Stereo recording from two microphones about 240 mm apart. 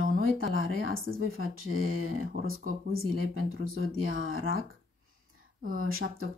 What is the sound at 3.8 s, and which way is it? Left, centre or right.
Speech, right.